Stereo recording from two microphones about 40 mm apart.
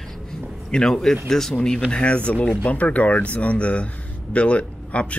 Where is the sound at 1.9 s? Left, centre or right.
Left.